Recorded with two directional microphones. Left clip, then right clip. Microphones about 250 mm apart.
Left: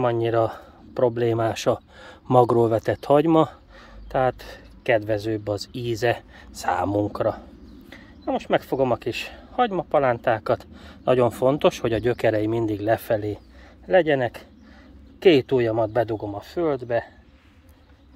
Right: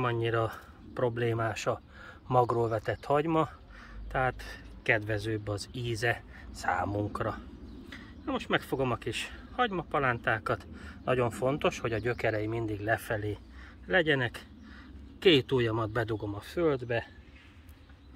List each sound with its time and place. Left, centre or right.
0.0 s speech: left